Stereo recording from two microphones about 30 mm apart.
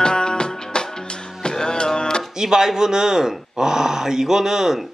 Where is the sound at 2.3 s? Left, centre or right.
Centre.